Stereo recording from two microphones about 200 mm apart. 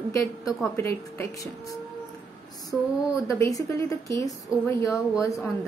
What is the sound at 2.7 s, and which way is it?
A woman's voice, 10° left (ahead or behind).